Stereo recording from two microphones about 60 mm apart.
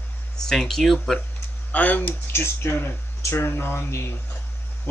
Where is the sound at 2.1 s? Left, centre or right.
Left.